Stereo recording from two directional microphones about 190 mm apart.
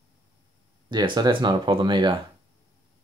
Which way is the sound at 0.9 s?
25° right (ahead or behind).